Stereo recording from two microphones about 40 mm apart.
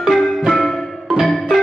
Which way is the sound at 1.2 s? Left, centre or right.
Left.